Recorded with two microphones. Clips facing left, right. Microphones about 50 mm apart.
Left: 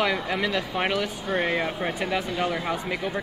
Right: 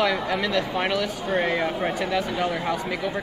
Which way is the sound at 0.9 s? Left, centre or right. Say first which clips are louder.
Right 2 dB; left.